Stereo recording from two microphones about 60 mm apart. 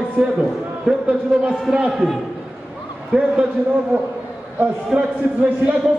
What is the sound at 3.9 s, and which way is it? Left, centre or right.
Speech, right.